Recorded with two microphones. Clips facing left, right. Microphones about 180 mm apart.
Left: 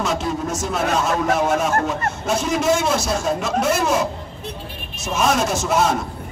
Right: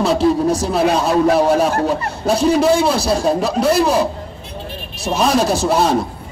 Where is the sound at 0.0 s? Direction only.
35° right (ahead or behind).